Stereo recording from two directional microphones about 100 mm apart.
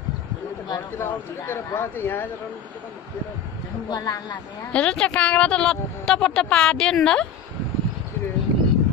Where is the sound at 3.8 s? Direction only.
35° left (ahead or behind).